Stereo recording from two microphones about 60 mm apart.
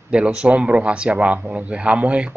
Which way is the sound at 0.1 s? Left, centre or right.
Centre.